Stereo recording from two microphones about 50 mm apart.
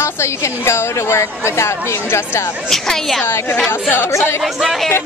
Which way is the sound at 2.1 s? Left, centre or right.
Left.